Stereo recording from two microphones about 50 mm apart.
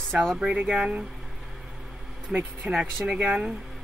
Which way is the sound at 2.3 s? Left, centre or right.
Right.